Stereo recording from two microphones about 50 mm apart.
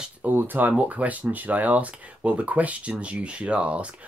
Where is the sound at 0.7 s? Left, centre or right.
Right.